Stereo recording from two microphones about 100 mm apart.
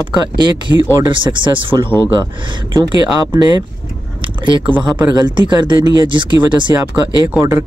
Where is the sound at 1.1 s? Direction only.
55° right (ahead or behind).